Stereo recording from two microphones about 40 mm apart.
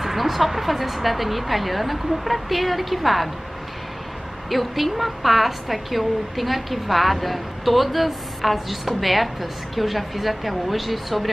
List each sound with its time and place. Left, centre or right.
0.0 s a woman's voice: centre
4.5 s a woman's voice: centre